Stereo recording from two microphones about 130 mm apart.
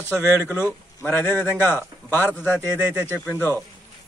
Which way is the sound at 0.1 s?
20° right (ahead or behind).